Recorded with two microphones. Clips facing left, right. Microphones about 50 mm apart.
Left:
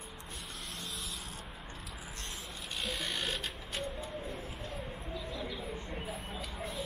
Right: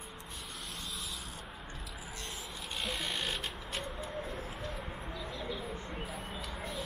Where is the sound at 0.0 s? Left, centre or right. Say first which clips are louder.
Right 1 dB; centre.